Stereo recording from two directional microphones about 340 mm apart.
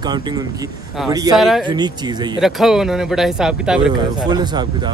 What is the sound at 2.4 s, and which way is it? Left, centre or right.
Speech, centre.